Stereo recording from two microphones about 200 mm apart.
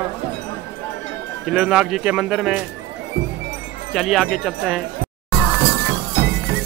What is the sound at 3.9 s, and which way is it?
Speech, centre (ahead or behind).